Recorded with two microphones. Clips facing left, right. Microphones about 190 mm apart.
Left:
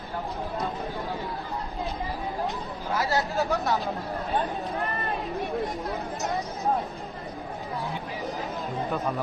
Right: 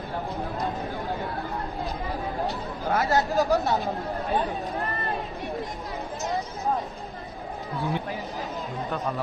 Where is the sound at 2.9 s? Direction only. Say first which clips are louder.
Right 3 dB; 40° right (ahead or behind).